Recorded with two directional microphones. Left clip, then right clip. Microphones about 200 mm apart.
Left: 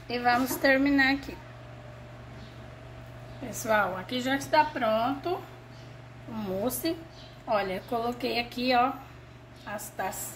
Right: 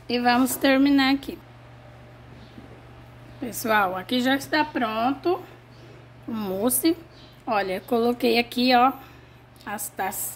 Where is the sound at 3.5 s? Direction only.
60° right (ahead or behind).